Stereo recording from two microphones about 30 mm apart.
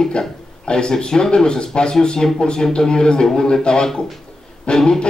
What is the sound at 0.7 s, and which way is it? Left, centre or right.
A man's voice, left.